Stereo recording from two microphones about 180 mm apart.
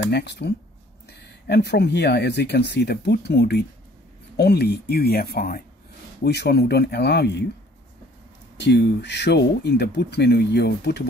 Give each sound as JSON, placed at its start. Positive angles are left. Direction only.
{"t": 0.1, "sound": "speech", "side_deg": 70}
{"t": 8.5, "sound": "speech", "side_deg": 75}